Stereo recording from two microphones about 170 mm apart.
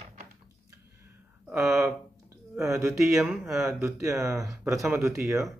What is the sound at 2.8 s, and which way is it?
Speech, 20° right (ahead or behind).